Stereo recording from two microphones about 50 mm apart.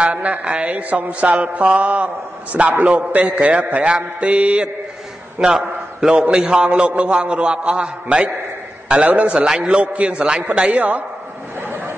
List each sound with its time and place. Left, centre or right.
0.0 s mantra: right
5.4 s a man's voice: centre
6.3 s mantra: centre
10.8 s a man's voice: right